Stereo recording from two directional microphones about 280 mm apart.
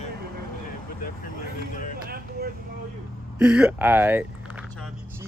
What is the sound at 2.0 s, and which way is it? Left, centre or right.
Vehicle, right.